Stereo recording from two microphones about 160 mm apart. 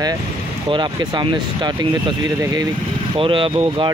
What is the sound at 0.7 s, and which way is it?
Speech, 30° right (ahead or behind).